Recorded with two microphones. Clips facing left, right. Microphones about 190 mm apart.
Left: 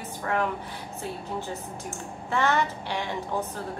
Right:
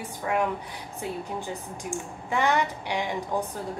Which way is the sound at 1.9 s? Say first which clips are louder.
Right 1 dB; 15° right (ahead or behind).